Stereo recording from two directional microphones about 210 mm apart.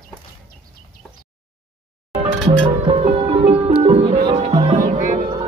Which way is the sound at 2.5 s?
25° right (ahead or behind).